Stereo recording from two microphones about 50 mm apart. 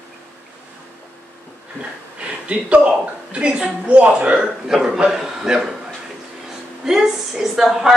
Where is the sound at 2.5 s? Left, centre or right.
Right.